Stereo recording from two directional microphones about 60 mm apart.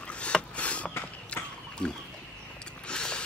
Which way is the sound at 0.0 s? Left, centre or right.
Centre.